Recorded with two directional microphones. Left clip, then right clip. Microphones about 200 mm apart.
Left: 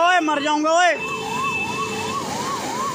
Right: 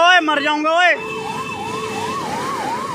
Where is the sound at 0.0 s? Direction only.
10° left (ahead or behind).